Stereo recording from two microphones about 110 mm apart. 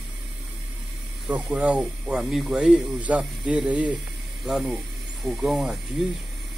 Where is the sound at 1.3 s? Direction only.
15° right (ahead or behind).